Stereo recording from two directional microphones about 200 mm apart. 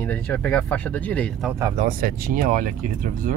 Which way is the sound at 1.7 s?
45° right (ahead or behind).